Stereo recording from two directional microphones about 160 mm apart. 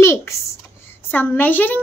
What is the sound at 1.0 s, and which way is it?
Speech, 10° left (ahead or behind).